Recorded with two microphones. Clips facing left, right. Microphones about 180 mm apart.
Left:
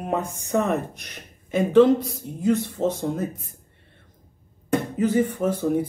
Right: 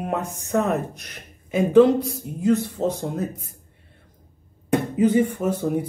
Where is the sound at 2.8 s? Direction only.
10° right (ahead or behind).